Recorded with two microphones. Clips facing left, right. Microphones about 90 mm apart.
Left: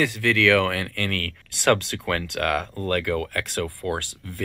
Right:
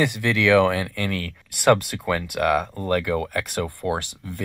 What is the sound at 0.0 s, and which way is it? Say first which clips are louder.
Speech: even; 20° right (ahead or behind).